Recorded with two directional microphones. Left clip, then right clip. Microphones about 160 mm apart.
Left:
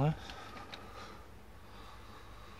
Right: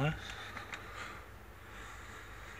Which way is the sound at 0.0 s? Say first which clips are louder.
Even; 35° left (ahead or behind).